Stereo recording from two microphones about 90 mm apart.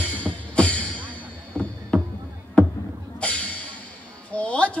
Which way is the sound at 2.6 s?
15° left (ahead or behind).